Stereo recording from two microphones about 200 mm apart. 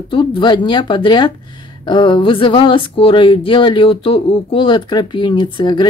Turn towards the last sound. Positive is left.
turn(degrees=20)  # may be behind; listen again after turning